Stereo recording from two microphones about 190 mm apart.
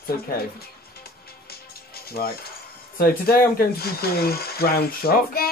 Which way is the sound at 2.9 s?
50° left (ahead or behind).